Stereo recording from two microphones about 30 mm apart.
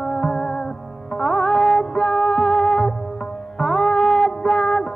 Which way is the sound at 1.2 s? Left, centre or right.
Centre.